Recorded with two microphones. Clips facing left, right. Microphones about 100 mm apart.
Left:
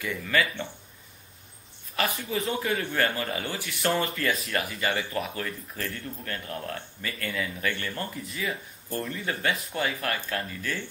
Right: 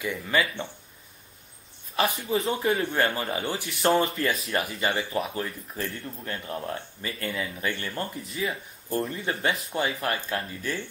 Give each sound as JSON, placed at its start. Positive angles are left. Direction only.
{"t": 0.0, "sound": "speech", "side_deg": -25}
{"t": 2.0, "sound": "speech", "side_deg": -30}